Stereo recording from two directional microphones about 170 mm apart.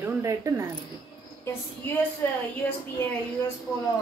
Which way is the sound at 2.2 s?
10° left (ahead or behind).